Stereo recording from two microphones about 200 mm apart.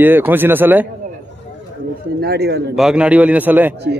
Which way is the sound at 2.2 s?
55° right (ahead or behind).